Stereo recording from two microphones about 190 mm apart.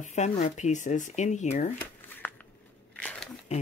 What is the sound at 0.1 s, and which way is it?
Speech, 40° left (ahead or behind).